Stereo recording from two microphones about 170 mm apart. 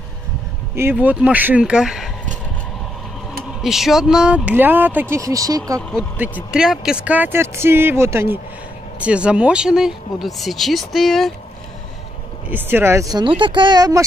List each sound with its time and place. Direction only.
0.7 s speech: 10° right (ahead or behind)
3.6 s speech: centre (ahead or behind); by 5.6 s 20° right (ahead or behind)
5.8 s speech: 5° left (ahead or behind)
6.1 s speech: 10° right (ahead or behind)
12.4 s speech: 10° right (ahead or behind)